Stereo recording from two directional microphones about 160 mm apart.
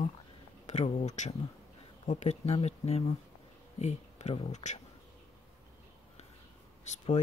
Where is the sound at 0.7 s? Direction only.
45° left (ahead or behind).